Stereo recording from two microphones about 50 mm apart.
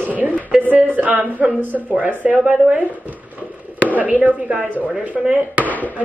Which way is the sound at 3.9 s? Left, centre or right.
Right.